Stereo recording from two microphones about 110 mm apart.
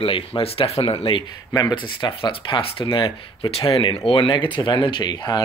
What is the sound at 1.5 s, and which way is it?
Speech, 40° left (ahead or behind).